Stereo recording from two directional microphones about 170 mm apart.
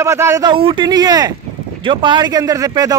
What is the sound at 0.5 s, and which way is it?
Speech, 30° right (ahead or behind).